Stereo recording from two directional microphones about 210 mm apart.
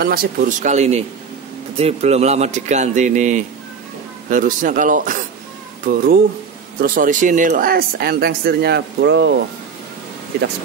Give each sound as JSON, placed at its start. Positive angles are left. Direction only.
{"t": 0.0, "sound": "speech", "side_deg": -45}
{"t": 6.8, "sound": "speech", "side_deg": -40}